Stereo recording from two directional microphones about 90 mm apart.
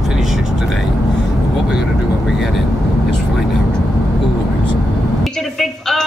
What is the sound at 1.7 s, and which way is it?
Speech, 5° right (ahead or behind).